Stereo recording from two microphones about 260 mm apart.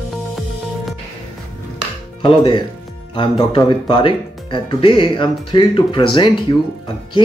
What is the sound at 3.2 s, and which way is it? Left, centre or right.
Speech, centre.